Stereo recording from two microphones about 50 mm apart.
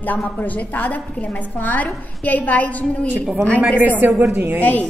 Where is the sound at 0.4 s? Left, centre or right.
Left.